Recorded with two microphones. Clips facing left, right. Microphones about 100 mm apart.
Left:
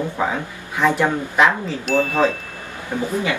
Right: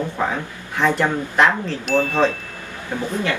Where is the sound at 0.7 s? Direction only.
5° left (ahead or behind).